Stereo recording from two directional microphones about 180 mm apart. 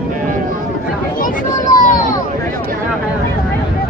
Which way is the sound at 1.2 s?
45° left (ahead or behind).